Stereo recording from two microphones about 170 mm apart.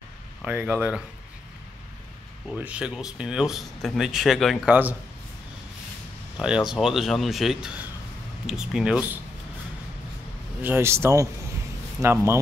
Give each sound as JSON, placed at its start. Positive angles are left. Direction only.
{"t": 0.4, "sound": "speech", "side_deg": -5}
{"t": 2.5, "sound": "speech", "side_deg": -5}
{"t": 6.3, "sound": "speech", "side_deg": -5}
{"t": 10.6, "sound": "speech", "side_deg": -15}